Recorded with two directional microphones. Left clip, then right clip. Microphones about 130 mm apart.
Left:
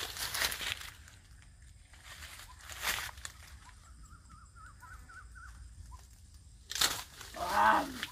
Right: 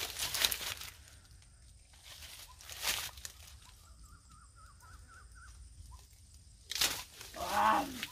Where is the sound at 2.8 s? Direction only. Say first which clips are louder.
Left 1 dB; 40° right (ahead or behind).